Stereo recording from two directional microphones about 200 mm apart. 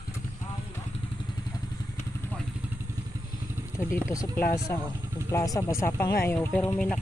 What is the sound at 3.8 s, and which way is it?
Speech, 10° left (ahead or behind).